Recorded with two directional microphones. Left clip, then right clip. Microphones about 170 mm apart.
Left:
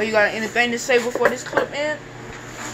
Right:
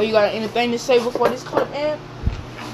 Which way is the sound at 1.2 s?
5° right (ahead or behind).